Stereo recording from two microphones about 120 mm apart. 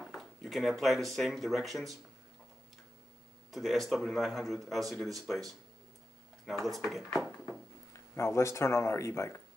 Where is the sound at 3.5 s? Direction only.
Centre (ahead or behind).